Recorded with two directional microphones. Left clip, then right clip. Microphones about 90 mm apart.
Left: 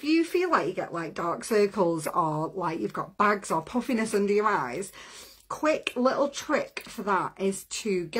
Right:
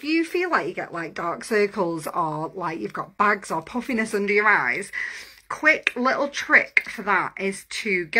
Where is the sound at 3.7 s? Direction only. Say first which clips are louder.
Right 1 dB; centre (ahead or behind).